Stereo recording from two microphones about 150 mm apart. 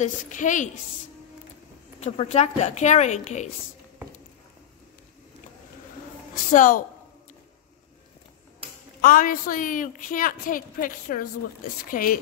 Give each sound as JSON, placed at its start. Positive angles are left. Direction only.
{"t": 0.0, "sound": "a woman's voice", "side_deg": 60}
{"t": 2.0, "sound": "a woman's voice", "side_deg": 45}
{"t": 6.3, "sound": "a woman's voice", "side_deg": 65}
{"t": 9.0, "sound": "a woman's voice", "side_deg": 65}